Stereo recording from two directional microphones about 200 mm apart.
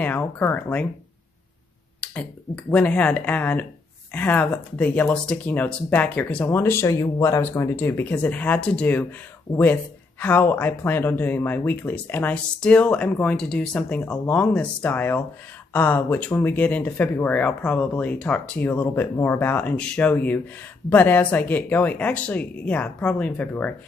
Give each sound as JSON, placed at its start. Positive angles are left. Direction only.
{"t": 0.0, "sound": "speech", "side_deg": 10}
{"t": 2.0, "sound": "speech", "side_deg": 5}
{"t": 10.2, "sound": "speech", "side_deg": 10}